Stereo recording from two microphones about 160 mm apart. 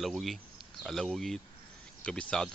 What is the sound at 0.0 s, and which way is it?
Speech, centre (ahead or behind).